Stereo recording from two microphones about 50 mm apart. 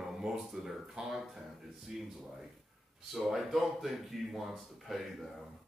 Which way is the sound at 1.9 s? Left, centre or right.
Centre.